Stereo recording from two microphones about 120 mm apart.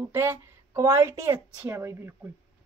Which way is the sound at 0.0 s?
20° right (ahead or behind).